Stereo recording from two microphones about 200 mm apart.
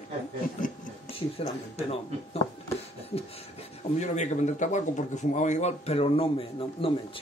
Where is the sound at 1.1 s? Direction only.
30° left (ahead or behind).